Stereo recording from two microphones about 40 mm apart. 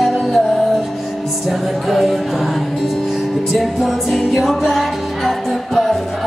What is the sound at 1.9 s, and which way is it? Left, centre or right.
Music, centre.